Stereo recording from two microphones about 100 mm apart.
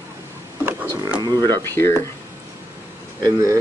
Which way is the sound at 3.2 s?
30° right (ahead or behind).